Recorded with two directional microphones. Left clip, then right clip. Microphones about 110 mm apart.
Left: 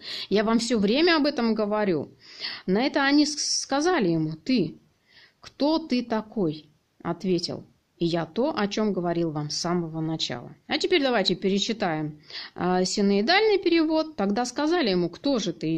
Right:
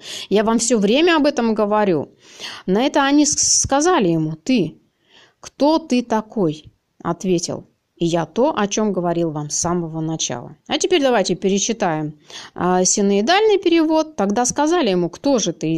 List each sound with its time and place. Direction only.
0.0 s a sound: 50° right (ahead or behind)
0.6 s speech: 45° right (ahead or behind)
9.7 s speech: 30° right (ahead or behind)
10.1 s speech: 40° right (ahead or behind)